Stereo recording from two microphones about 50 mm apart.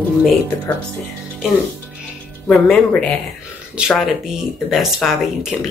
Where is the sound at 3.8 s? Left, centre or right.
Centre.